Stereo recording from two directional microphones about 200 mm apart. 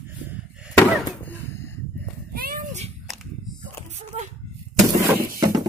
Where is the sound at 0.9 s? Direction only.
10° left (ahead or behind).